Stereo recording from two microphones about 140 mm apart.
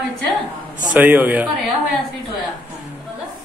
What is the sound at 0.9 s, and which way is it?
Speech, 10° right (ahead or behind).